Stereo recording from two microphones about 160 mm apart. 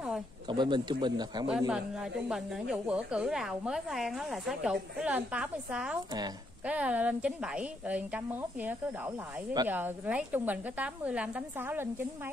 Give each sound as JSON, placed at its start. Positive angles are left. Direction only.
{"t": 0.5, "sound": "speech", "side_deg": -30}
{"t": 1.7, "sound": "a woman's voice", "side_deg": -5}